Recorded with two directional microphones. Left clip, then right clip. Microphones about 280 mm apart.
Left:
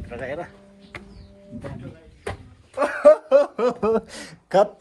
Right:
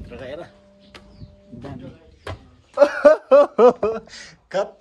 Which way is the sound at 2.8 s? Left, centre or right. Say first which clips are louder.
Right 2 dB; right.